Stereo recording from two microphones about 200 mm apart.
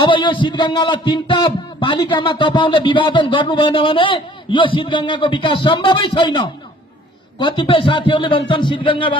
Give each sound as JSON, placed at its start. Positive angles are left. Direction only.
{"t": 0.0, "sound": "a man's voice", "side_deg": 25}